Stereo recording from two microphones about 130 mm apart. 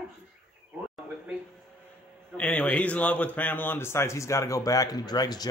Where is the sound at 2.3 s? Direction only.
10° left (ahead or behind).